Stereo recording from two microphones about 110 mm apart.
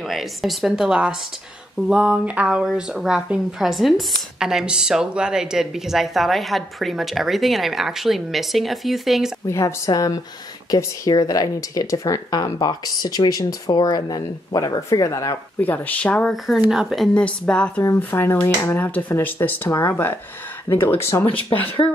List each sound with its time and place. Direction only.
0.1 s a woman's voice: centre (ahead or behind)
9.5 s speech: 30° left (ahead or behind)
15.6 s speech: 15° left (ahead or behind)
16.7 s speech: centre (ahead or behind)
17.8 s speech: 20° left (ahead or behind)